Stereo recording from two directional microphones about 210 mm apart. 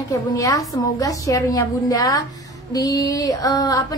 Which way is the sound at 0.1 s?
15° left (ahead or behind).